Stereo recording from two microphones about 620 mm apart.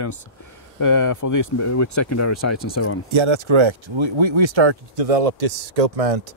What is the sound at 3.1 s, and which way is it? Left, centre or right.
Speech, right.